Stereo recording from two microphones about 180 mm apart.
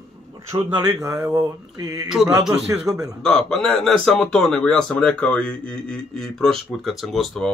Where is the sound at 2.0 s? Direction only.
5° right (ahead or behind).